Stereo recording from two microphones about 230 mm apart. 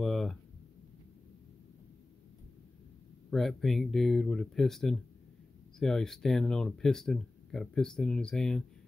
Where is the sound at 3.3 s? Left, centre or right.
Centre.